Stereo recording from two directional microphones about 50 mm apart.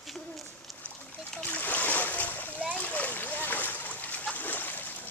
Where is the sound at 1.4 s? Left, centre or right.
Left.